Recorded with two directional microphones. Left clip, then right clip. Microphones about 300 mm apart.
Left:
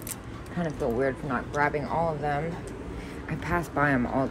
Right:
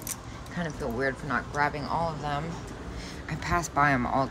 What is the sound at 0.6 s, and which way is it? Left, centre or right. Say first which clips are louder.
Speech: left 3 dB; centre.